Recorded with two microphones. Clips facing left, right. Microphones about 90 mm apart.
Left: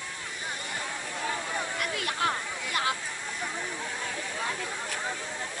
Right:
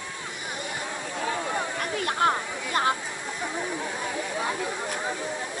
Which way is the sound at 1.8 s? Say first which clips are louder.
Right 5 dB; 35° right (ahead or behind).